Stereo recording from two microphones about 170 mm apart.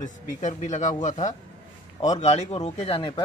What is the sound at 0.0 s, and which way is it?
Speech, 45° left (ahead or behind).